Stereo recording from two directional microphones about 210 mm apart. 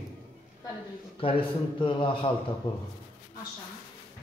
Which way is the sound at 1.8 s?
25° left (ahead or behind).